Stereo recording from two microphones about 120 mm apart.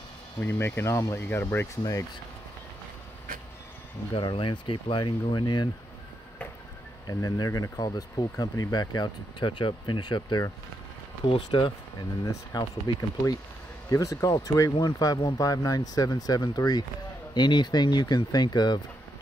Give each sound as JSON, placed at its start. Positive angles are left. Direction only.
{"t": 0.4, "sound": "speech", "side_deg": 20}
{"t": 4.1, "sound": "speech", "side_deg": 45}
{"t": 7.1, "sound": "speech", "side_deg": 30}